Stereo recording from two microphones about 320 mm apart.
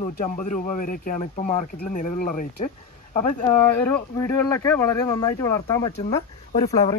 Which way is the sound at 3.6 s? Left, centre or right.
Centre.